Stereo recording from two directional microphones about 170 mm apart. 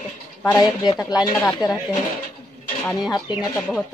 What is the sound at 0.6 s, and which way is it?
Speech, 25° left (ahead or behind).